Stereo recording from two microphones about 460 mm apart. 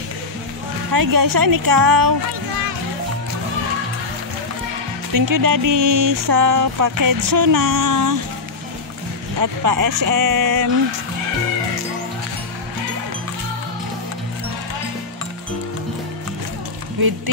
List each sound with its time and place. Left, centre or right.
0.9 s music: right
5.1 s music: right
9.4 s music: right